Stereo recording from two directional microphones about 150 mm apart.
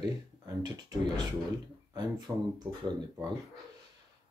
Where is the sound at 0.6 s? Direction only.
30° right (ahead or behind).